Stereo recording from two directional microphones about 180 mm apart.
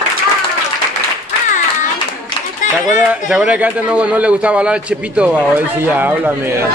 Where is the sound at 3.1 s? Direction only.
5° right (ahead or behind).